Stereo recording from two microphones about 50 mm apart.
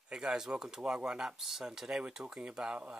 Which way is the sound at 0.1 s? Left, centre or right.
Centre.